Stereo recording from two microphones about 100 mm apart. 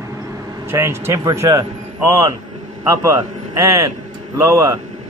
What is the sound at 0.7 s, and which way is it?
Speech, 25° right (ahead or behind).